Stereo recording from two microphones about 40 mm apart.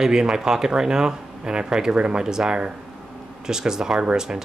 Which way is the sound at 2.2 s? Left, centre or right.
Centre.